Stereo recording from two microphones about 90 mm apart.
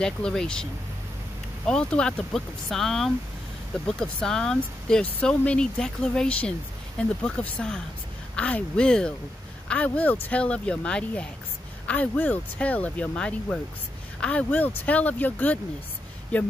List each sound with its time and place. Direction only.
0.0 s speech: 5° left (ahead or behind)
1.7 s speech: 10° left (ahead or behind)